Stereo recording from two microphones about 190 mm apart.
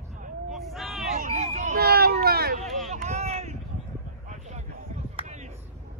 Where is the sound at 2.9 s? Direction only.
35° right (ahead or behind).